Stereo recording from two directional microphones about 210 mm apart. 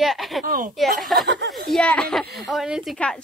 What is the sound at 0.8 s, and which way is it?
Speech, centre (ahead or behind).